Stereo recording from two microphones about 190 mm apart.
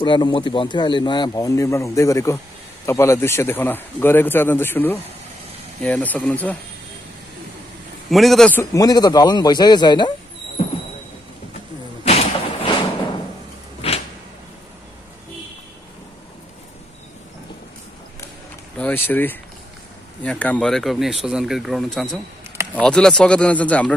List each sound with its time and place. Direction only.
0.0 s a man's voice: 25° left (ahead or behind); by 6.5 s 5° left (ahead or behind)
8.1 s speech: centre (ahead or behind)
8.7 s a man's voice: 20° left (ahead or behind)
12.0 s a sound: 30° left (ahead or behind)
13.7 s a sound: 30° left (ahead or behind)
18.8 s speech: 10° left (ahead or behind)